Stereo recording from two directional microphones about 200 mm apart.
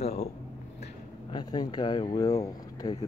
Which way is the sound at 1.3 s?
20° left (ahead or behind).